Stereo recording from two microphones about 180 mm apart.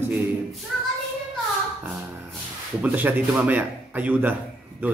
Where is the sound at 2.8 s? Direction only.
10° right (ahead or behind).